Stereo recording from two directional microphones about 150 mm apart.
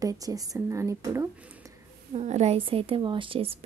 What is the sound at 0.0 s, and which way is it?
A woman's voice, 25° right (ahead or behind).